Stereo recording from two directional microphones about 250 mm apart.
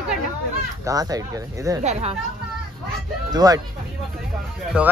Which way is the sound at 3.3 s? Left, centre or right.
Centre.